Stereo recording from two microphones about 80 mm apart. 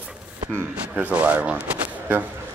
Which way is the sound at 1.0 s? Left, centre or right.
Right.